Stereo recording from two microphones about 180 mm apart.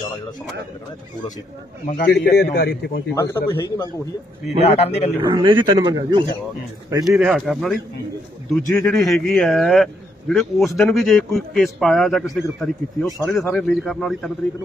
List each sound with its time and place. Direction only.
2.0 s a man's voice: 50° left (ahead or behind)
3.2 s a man's voice: 15° left (ahead or behind)
4.6 s a man's voice: 35° left (ahead or behind)
5.2 s speech: 25° right (ahead or behind)
7.1 s a man's voice: 5° right (ahead or behind)